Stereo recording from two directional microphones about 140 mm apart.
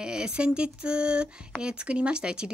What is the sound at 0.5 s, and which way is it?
Speech, 5° right (ahead or behind).